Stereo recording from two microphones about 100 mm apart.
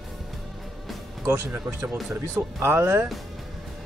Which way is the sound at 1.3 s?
20° right (ahead or behind).